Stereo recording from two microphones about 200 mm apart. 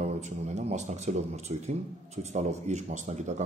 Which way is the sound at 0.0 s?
35° right (ahead or behind).